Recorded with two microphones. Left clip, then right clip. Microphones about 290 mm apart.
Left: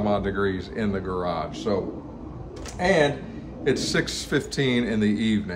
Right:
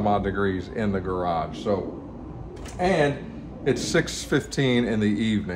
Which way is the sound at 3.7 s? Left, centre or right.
Centre.